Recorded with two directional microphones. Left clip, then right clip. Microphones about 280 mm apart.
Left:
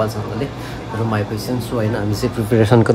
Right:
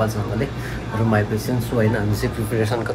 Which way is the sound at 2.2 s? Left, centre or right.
Left.